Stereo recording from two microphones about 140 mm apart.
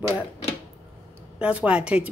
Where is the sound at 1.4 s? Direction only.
10° right (ahead or behind).